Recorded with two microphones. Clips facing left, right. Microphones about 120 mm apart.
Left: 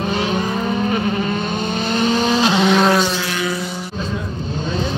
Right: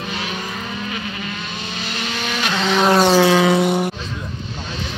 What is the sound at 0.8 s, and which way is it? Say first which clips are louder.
Vehicle: left 9 dB; 40° left (ahead or behind).